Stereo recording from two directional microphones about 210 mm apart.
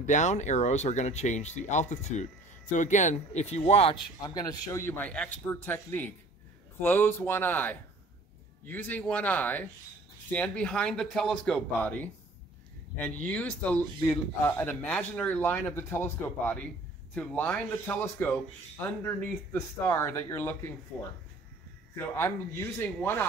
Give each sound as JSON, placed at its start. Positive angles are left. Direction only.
{"t": 0.0, "sound": "a man's voice", "side_deg": 35}